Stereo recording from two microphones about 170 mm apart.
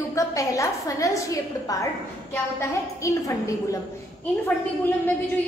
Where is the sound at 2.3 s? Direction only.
20° left (ahead or behind).